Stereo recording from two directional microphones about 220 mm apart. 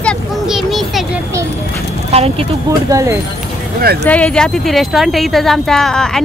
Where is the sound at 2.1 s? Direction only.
25° right (ahead or behind).